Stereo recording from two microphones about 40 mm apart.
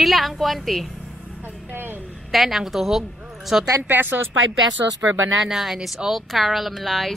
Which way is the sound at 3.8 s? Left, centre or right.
Right.